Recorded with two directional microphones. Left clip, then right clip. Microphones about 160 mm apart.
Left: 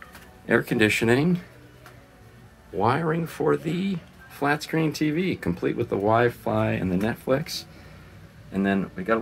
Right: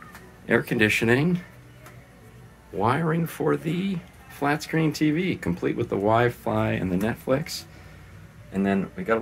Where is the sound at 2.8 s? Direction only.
5° left (ahead or behind).